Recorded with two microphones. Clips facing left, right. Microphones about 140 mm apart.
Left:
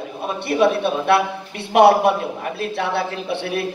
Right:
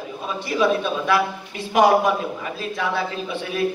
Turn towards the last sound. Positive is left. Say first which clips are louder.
# left 1 dB
turn(degrees=70)  # may be behind; listen again after turning